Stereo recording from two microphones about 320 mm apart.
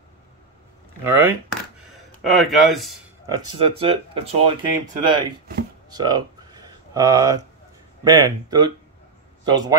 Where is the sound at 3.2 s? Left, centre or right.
Centre.